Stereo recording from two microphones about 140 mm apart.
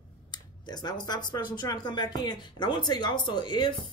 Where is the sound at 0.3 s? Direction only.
30° left (ahead or behind).